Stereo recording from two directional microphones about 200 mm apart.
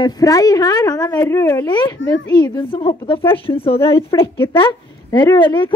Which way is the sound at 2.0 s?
70° left (ahead or behind).